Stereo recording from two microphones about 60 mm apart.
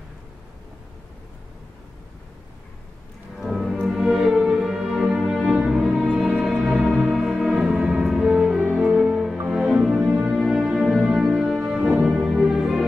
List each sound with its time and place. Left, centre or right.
3.3 s music: centre
9.9 s music: centre
10.3 s music: centre